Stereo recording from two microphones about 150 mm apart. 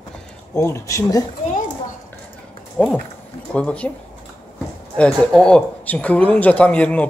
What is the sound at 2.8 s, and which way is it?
Speech, 10° left (ahead or behind).